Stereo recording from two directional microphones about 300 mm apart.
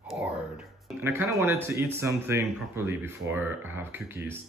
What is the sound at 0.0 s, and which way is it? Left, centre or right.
Speech, centre.